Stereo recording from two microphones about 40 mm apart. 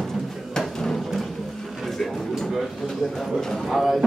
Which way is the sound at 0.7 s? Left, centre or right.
Centre.